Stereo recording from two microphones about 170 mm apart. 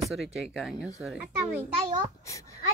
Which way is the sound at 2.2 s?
20° left (ahead or behind).